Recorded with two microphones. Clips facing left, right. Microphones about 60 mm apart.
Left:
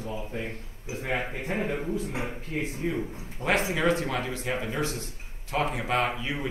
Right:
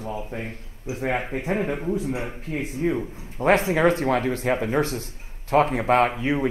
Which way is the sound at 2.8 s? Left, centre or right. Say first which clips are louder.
Right 5 dB; right.